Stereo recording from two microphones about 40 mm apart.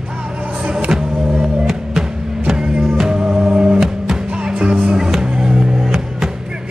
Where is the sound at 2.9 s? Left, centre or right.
Centre.